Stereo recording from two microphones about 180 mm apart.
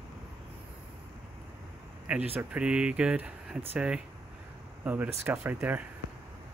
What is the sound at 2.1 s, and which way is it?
Speech, 10° right (ahead or behind).